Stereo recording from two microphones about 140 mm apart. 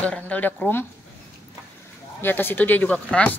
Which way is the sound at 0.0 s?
10° left (ahead or behind).